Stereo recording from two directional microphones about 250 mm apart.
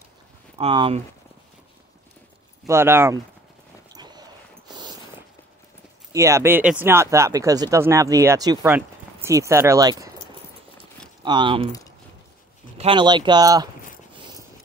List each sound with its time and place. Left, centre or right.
0.6 s speech: right
2.6 s speech: centre
3.9 s dog: centre
4.6 s a sound: centre
6.1 s speech: centre
11.2 s speech: centre
12.7 s speech: right